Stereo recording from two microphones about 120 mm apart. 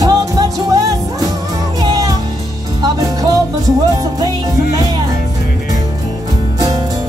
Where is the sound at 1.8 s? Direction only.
30° right (ahead or behind).